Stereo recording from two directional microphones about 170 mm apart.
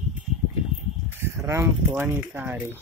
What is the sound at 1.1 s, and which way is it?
Speech, 15° right (ahead or behind).